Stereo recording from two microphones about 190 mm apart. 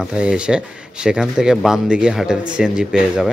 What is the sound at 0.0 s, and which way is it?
Speech, 5° right (ahead or behind).